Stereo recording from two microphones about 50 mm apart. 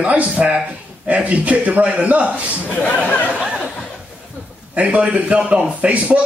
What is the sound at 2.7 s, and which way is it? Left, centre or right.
Speech, left.